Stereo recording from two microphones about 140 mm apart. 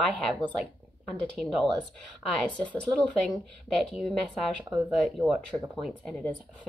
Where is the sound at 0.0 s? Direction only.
5° left (ahead or behind).